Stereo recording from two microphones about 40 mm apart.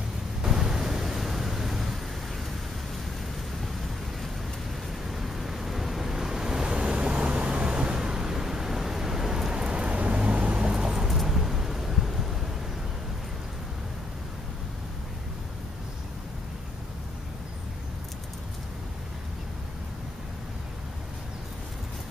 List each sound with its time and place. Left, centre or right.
0.4 s a sound: centre
5.1 s waves: centre; by 9.9 s right
9.9 s vehicle: right
11.1 s vehicle: centre